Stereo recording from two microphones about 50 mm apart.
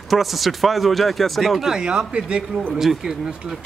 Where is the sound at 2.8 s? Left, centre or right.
Centre.